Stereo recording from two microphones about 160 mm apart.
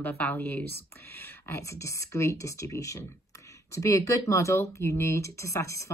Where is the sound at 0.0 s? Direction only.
10° left (ahead or behind).